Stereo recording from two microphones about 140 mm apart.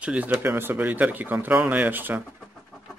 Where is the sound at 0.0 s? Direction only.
10° right (ahead or behind).